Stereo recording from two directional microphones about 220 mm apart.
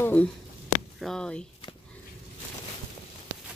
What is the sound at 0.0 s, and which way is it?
Speech, 5° left (ahead or behind).